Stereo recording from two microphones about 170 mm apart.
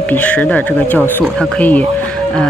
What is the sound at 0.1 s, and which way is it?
Speech, 10° left (ahead or behind).